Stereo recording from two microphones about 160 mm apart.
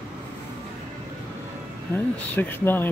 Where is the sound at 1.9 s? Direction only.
10° left (ahead or behind).